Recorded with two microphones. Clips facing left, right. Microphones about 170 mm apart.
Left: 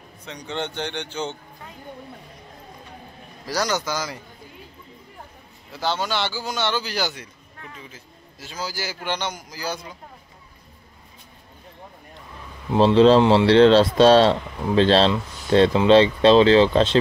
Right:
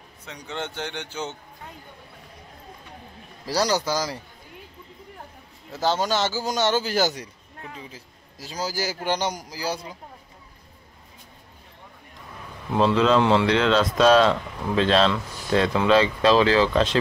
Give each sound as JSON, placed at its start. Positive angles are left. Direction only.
{"t": 0.2, "sound": "speech", "side_deg": -5}
{"t": 3.4, "sound": "speech", "side_deg": -30}
{"t": 5.7, "sound": "speech", "side_deg": -40}
{"t": 12.7, "sound": "speech", "side_deg": 30}